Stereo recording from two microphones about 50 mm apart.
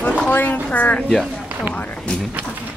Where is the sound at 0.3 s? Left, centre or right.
Left.